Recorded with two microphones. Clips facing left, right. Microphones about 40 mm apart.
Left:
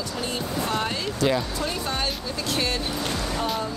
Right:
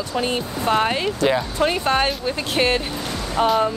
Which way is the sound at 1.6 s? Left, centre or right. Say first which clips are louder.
Right 9 dB; right.